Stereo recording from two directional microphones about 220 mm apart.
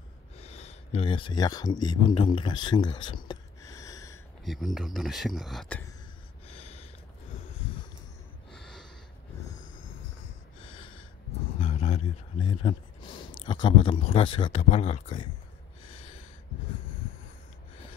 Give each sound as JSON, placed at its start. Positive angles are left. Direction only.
{"t": 0.4, "sound": "speech", "side_deg": 30}
{"t": 4.5, "sound": "speech", "side_deg": 0}
{"t": 6.4, "sound": "a sound", "side_deg": 25}
{"t": 8.5, "sound": "gasp", "side_deg": 0}
{"t": 11.5, "sound": "a sound", "side_deg": 25}
{"t": 13.5, "sound": "speech", "side_deg": 20}